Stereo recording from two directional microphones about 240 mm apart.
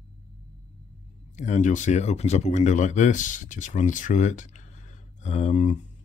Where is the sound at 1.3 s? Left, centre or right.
Left.